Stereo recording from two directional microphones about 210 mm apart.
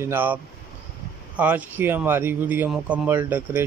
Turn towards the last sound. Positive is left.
turn(degrees=-10)  # may be behind; listen again after turning